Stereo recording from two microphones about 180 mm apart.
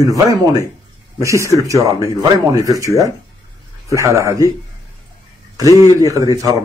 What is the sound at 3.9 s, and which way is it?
Speech, 15° right (ahead or behind).